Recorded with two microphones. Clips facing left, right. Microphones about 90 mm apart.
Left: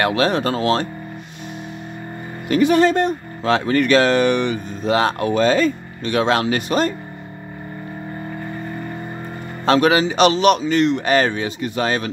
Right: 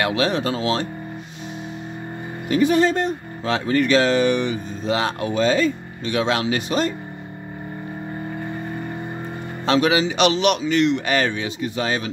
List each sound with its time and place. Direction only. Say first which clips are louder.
0.0 s speech: left 3 dB; 50° left (ahead or behind)
2.4 s speech: left 3 dB; 70° left (ahead or behind); by 6.9 s 50° left (ahead or behind)
9.7 s a man's voice: left 3 dB; 50° left (ahead or behind)
11.6 s speech: left 3 dB; 55° left (ahead or behind)